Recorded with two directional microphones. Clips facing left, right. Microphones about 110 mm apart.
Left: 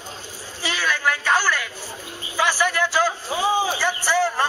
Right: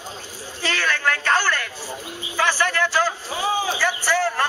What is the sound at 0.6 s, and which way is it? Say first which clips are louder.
A man's voice: even; 10° left (ahead or behind).